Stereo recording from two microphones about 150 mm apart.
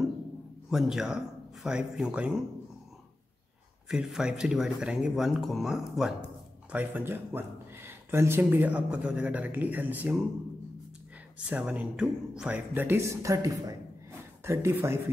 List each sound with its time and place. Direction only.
0.7 s speech: centre (ahead or behind)
3.9 s speech: 5° right (ahead or behind)
11.3 s speech: 10° right (ahead or behind)